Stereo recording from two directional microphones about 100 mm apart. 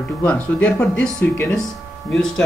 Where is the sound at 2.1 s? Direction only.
5° left (ahead or behind).